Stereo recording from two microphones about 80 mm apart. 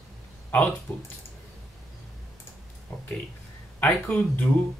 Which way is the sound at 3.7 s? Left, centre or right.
Centre.